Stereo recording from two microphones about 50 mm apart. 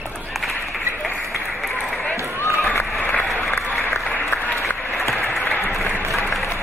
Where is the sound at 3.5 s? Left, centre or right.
Left.